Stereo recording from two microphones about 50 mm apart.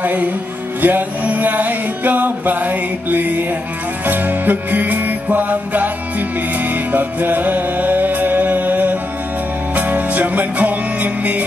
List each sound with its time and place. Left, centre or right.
0.0 s music: right